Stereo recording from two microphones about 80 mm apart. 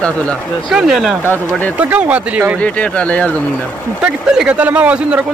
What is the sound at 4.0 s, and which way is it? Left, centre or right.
Speech, centre.